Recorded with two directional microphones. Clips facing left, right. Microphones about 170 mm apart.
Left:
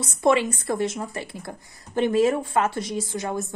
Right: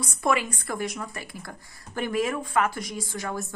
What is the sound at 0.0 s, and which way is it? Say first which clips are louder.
A woman's voice: left 5 dB; 25° left (ahead or behind).